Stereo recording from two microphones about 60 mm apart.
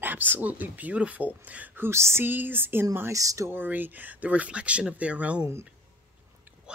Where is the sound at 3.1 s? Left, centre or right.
Right.